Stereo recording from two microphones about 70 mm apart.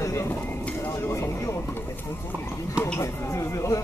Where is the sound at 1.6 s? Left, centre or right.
Left.